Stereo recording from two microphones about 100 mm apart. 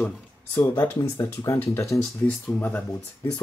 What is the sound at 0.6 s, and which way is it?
Speech, 30° left (ahead or behind).